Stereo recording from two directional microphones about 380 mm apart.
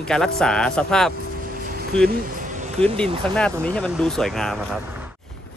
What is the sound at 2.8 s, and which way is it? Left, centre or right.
Speech, centre.